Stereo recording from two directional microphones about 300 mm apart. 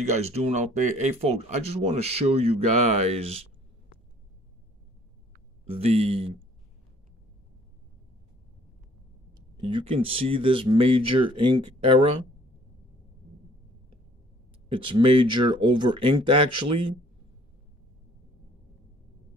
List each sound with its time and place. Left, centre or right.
0.0 s speech: right
5.7 s speech: centre
9.6 s speech: centre
14.7 s speech: right
16.2 s speech: centre
16.4 s speech: right